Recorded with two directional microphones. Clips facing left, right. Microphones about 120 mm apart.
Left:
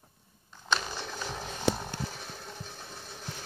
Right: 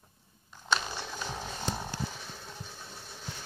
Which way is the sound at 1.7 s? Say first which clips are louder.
Left 8 dB; 70° left (ahead or behind).